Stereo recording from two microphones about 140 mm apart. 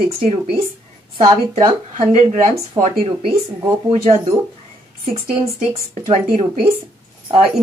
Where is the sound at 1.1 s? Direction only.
35° right (ahead or behind).